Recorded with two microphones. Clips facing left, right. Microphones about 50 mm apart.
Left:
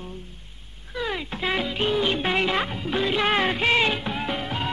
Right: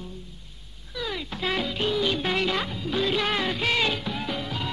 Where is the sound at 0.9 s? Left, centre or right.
Left.